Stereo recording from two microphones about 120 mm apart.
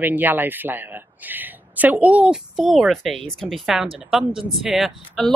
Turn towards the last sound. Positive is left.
turn(degrees=0)  # may be behind; listen again after turning